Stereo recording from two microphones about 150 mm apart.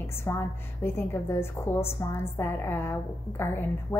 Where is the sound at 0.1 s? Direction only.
15° left (ahead or behind).